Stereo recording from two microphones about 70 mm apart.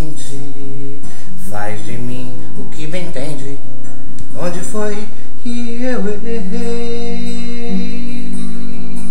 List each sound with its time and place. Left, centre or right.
1.7 s music: centre
2.8 s a woman's voice: centre
5.9 s music: centre